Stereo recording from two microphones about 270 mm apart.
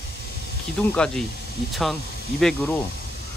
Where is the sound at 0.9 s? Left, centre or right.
Centre.